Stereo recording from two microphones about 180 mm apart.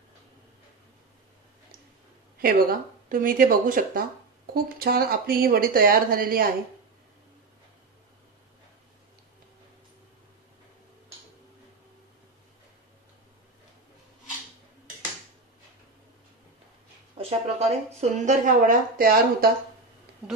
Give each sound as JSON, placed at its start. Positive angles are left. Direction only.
{"t": 2.4, "sound": "speech", "side_deg": -50}
{"t": 17.2, "sound": "a woman's voice", "side_deg": -35}